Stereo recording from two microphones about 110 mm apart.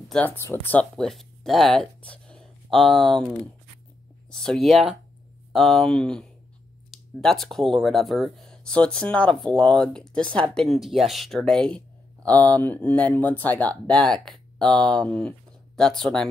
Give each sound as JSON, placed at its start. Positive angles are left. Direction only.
{"t": 0.1, "sound": "speech", "side_deg": 15}
{"t": 0.9, "sound": "speech", "side_deg": 5}
{"t": 4.3, "sound": "speech", "side_deg": 5}
{"t": 11.4, "sound": "a sound", "side_deg": 5}
{"t": 12.4, "sound": "speech", "side_deg": 15}